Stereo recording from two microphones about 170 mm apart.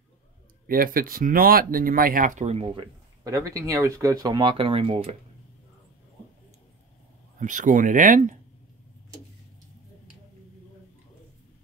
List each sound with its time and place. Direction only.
0.7 s speech: 55° right (ahead or behind); by 5.1 s 35° right (ahead or behind)
7.3 s speech: 50° right (ahead or behind)